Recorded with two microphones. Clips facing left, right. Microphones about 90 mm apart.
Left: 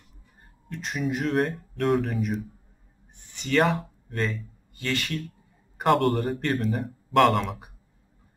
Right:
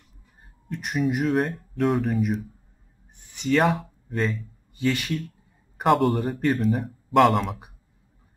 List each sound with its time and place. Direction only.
0.7 s speech: 15° right (ahead or behind)
1.1 s speech: centre (ahead or behind)
3.4 s speech: centre (ahead or behind)
4.7 s speech: 15° right (ahead or behind)
5.8 s speech: centre (ahead or behind)